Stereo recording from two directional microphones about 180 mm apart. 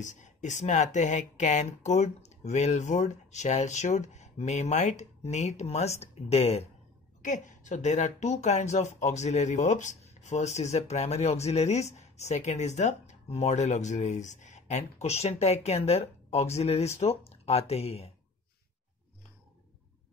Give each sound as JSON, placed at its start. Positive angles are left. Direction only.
{"t": 0.0, "sound": "speech", "side_deg": 45}